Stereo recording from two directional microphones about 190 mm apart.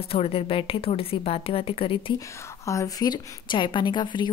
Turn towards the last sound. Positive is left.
turn(degrees=25)  # may be behind; listen again after turning